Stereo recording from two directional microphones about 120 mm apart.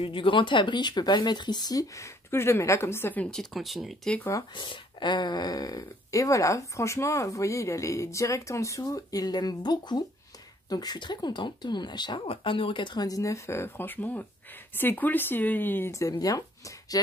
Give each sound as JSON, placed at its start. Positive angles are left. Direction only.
{"t": 0.0, "sound": "speech", "side_deg": 45}
{"t": 4.6, "sound": "speech", "side_deg": 40}